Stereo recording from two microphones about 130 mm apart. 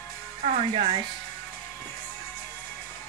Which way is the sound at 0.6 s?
50° right (ahead or behind).